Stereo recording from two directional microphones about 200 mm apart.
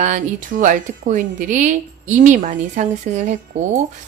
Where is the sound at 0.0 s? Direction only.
40° right (ahead or behind).